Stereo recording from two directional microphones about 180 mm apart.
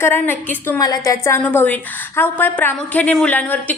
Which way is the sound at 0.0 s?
10° left (ahead or behind).